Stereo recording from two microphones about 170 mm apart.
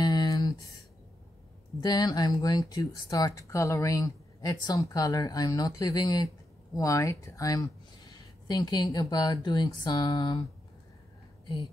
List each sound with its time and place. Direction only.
0.0 s a sound: 25° left (ahead or behind)
1.8 s speech: 25° left (ahead or behind)
11.4 s speech: 30° left (ahead or behind)